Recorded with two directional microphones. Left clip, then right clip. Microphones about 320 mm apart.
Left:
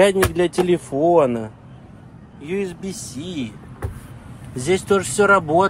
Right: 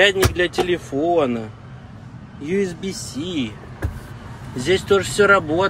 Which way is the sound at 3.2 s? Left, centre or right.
Centre.